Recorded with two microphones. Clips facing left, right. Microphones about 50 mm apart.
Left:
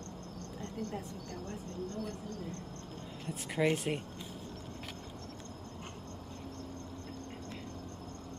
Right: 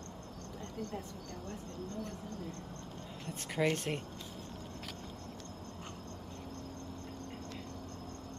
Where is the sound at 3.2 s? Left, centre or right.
Centre.